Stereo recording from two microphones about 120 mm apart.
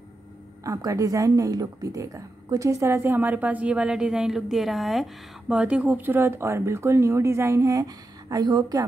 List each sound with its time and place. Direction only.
0.7 s a woman's voice: 30° right (ahead or behind)